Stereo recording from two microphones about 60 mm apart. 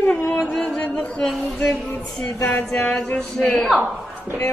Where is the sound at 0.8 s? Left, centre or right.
Left.